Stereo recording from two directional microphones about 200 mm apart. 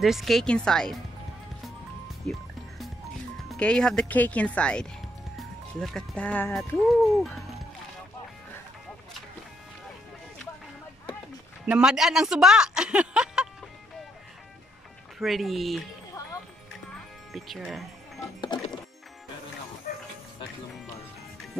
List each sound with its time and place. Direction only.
0.0 s speech: centre (ahead or behind)
3.5 s speech: 5° left (ahead or behind)
11.6 s speech: 5° right (ahead or behind)
15.1 s speech: centre (ahead or behind)
17.3 s speech: centre (ahead or behind)
18.5 s music: 20° left (ahead or behind)